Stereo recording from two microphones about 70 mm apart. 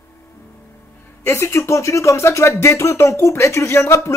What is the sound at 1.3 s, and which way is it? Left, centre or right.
Speech, left.